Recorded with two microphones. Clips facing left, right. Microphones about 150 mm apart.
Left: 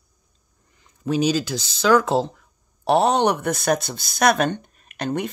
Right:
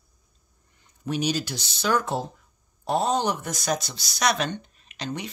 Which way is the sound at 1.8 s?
90° left.